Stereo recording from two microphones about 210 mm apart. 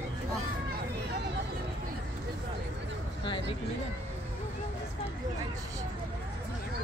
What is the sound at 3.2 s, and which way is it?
Speech, 25° left (ahead or behind).